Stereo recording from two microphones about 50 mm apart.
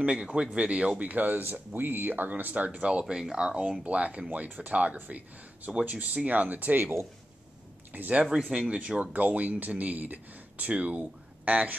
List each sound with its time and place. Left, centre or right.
0.0 s speech: centre; by 6.9 s right
7.9 s speech: right
8.5 s speech: right